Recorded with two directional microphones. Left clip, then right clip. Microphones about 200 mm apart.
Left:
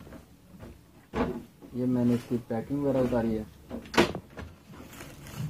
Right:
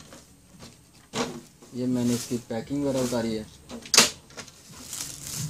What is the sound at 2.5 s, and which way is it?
Speech, 10° left (ahead or behind).